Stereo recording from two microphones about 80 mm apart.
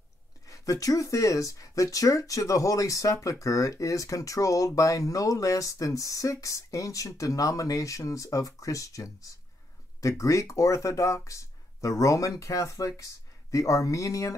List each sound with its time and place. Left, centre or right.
0.5 s speech: left